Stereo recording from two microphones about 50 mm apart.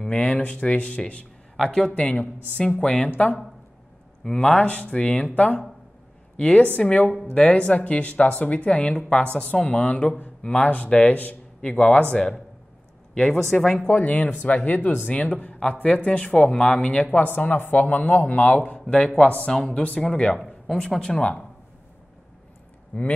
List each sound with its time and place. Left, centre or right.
0.1 s speech: left
4.2 s speech: centre
5.3 s speech: left
13.1 s speech: centre
13.8 s speech: left; by 21.2 s centre
22.9 s speech: left